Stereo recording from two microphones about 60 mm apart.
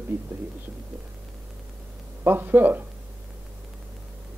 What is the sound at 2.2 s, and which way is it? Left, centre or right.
Speech, right.